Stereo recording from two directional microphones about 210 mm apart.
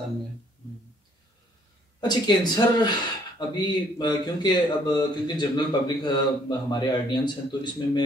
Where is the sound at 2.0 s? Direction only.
20° left (ahead or behind).